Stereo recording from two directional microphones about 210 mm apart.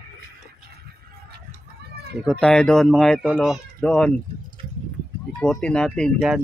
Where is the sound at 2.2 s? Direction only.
5° left (ahead or behind).